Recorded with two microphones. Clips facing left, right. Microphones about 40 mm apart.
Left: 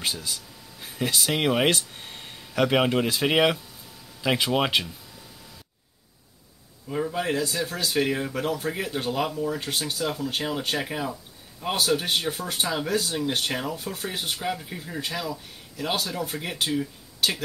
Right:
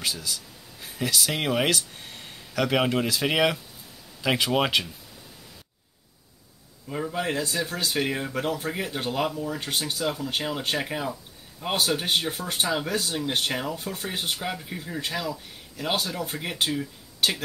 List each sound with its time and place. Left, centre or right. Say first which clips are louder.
0.0 s speech: even; centre
4.2 s speech: even; centre
6.9 s speech: left 2 dB; centre